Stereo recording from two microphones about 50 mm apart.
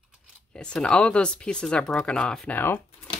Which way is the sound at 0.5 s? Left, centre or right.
Centre.